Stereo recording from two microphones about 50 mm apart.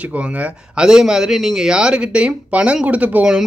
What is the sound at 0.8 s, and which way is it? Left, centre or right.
Speech, centre.